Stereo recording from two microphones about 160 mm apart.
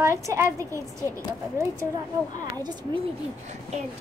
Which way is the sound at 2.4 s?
25° right (ahead or behind).